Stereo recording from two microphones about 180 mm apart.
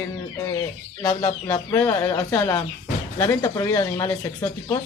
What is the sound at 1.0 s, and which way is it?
Speech, 20° left (ahead or behind).